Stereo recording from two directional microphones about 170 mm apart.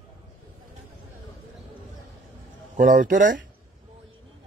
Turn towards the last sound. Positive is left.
turn(degrees=-50)  # may be behind; listen again after turning